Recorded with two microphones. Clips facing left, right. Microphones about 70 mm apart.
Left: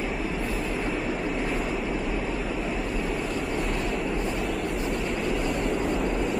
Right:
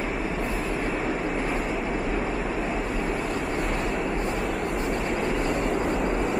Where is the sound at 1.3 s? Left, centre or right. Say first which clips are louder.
Right 1 dB; centre.